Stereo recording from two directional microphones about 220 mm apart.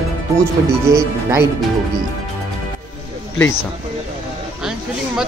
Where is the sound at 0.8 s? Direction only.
15° right (ahead or behind).